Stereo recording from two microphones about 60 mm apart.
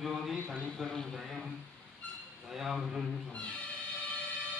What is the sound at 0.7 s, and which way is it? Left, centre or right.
A man's voice, centre.